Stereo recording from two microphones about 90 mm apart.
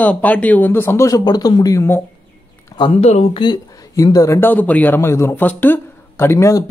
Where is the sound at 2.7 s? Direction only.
80° left.